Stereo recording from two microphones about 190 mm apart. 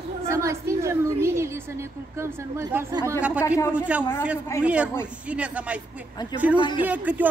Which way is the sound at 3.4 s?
15° left (ahead or behind).